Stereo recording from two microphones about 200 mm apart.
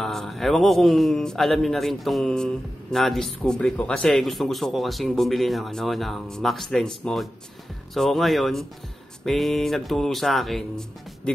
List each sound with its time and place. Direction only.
0.0 s a man's voice: centre (ahead or behind)